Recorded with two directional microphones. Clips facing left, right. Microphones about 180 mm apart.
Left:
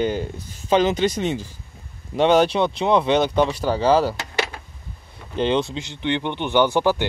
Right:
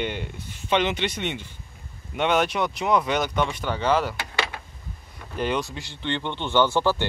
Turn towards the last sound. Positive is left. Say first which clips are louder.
# left 3 dB
turn(degrees=15)  # may be behind; listen again after turning